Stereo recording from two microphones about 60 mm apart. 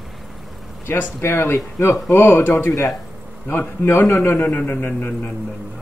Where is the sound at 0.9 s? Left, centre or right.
Left.